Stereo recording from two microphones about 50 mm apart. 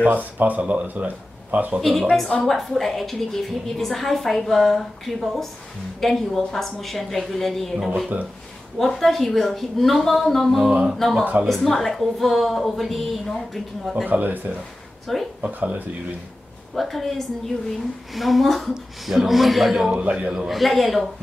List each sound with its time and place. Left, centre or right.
0.0 s speech: right
1.8 s a woman's voice: centre
8.7 s a woman's voice: centre
14.0 s speech: right
15.1 s a woman's voice: centre
15.4 s speech: right
16.7 s a woman's voice: centre
19.9 s speech: right
20.2 s a woman's voice: centre